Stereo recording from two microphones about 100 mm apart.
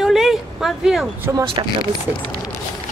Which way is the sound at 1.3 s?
25° right (ahead or behind).